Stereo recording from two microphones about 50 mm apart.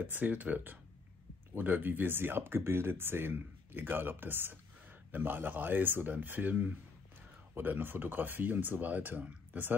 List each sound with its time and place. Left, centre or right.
0.0 s speech: right